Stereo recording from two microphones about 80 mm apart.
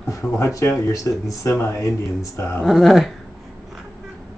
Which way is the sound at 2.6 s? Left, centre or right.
Centre.